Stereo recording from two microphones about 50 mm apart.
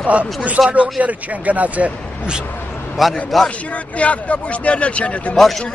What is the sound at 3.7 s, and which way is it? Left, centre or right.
Speech, left.